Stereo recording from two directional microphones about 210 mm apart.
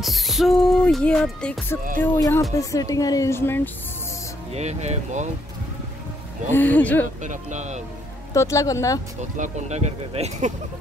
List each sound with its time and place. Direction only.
0.0 s music: centre (ahead or behind)
2.0 s a woman's voice: 15° left (ahead or behind)
4.6 s speech: 30° right (ahead or behind)
6.5 s a woman's voice: 10° left (ahead or behind)
7.2 s speech: 35° right (ahead or behind)
8.3 s a woman's voice: 15° left (ahead or behind)
9.2 s speech: 35° right (ahead or behind)